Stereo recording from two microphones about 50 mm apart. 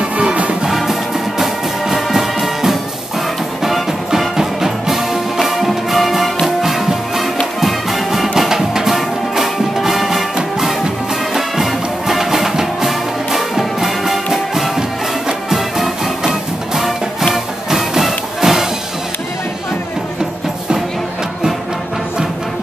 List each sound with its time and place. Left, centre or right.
0.2 s music: right
0.7 s music: centre
11.3 s music: centre